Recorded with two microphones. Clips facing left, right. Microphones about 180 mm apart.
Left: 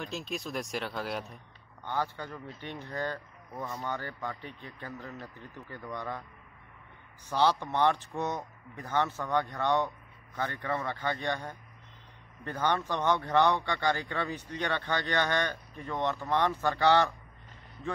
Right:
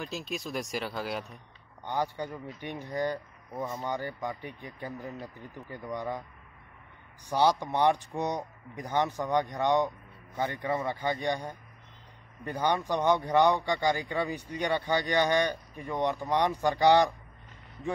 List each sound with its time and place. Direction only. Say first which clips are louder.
0.0 s speech: right 1 dB; centre (ahead or behind)
1.9 s speech: right 2 dB; 15° right (ahead or behind)
7.2 s speech: right 2 dB; 15° right (ahead or behind)